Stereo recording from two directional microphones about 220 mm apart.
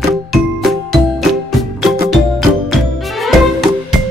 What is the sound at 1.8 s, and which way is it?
Music, centre (ahead or behind).